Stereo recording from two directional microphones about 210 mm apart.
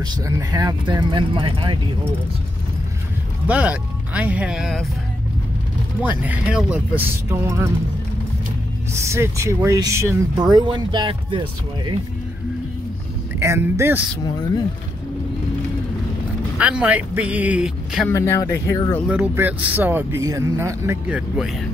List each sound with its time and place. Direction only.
0.0 s speech: 15° right (ahead or behind)
3.4 s speech: 5° right (ahead or behind)
6.2 s speech: 5° right (ahead or behind)
8.9 s speech: 15° right (ahead or behind)
13.4 s speech: 15° right (ahead or behind)
16.5 s speech: 5° right (ahead or behind)
18.0 s speech: 10° left (ahead or behind)
19.0 s speech: 10° right (ahead or behind)